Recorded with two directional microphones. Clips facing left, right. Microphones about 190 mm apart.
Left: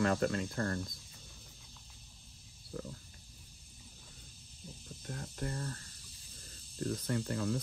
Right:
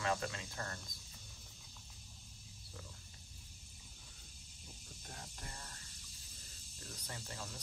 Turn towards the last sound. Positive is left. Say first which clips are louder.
# left 15 dB
turn(degrees=60)  # may be behind; listen again after turning